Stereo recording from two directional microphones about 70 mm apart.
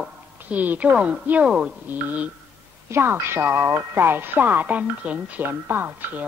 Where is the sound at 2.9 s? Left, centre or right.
Right.